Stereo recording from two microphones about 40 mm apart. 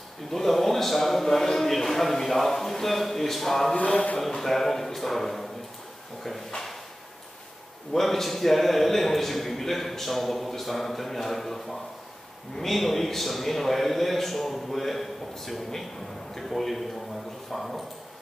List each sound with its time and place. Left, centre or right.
0.3 s a man's voice: centre
3.7 s speech: left
4.3 s a man's voice: centre
7.9 s a man's voice: centre